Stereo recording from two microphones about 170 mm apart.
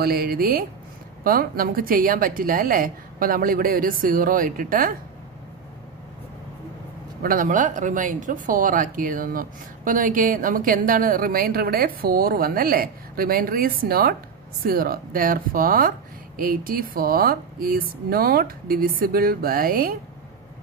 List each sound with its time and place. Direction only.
0.0 s speech: 65° right (ahead or behind)
7.2 s speech: 55° right (ahead or behind)